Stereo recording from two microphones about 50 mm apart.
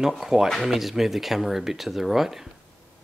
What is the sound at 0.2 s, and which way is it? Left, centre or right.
Speech, centre.